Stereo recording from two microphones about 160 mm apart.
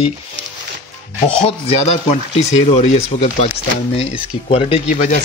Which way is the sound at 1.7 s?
40° left (ahead or behind).